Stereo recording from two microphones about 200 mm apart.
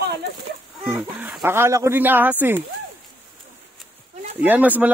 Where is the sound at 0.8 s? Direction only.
5° right (ahead or behind).